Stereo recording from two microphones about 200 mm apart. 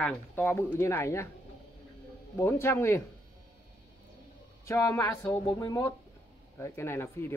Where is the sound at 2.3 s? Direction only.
15° left (ahead or behind).